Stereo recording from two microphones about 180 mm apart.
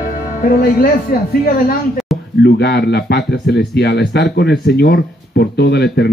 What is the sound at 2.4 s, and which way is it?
Speech, 70° left (ahead or behind).